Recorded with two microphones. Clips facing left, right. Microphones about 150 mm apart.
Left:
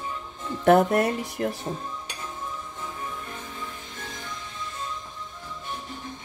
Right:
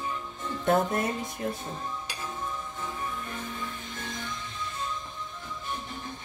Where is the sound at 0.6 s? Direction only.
70° left (ahead or behind).